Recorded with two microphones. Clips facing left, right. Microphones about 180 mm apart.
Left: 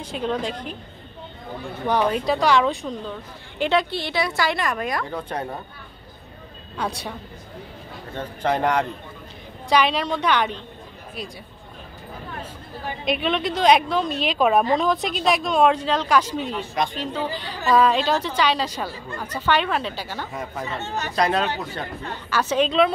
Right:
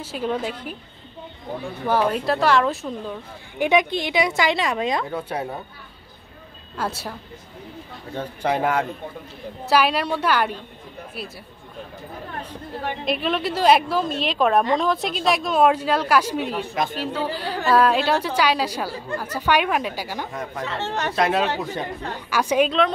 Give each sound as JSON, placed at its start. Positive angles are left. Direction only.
{"t": 0.0, "sound": "a woman's voice", "side_deg": -5}
{"t": 1.9, "sound": "a woman's voice", "side_deg": -5}
{"t": 5.0, "sound": "a woman's voice", "side_deg": -5}
{"t": 6.8, "sound": "a woman's voice", "side_deg": -5}
{"t": 13.0, "sound": "a woman's voice", "side_deg": 0}
{"t": 20.6, "sound": "speech", "side_deg": -90}
{"t": 21.1, "sound": "a woman's voice", "side_deg": -5}